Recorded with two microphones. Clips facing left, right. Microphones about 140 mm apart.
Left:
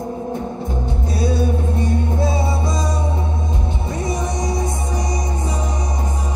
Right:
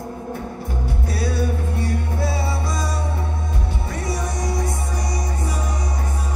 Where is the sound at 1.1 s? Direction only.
20° left (ahead or behind).